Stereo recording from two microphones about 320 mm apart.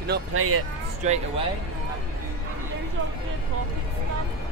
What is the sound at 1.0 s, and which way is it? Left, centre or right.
Speech, right.